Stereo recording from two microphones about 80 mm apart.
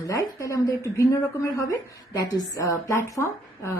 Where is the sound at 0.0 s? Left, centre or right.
Left.